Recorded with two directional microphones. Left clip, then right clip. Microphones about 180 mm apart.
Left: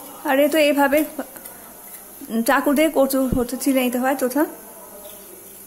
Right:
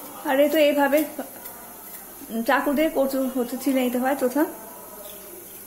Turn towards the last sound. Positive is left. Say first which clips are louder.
# left 2 dB
turn(degrees=15)  # may be behind; listen again after turning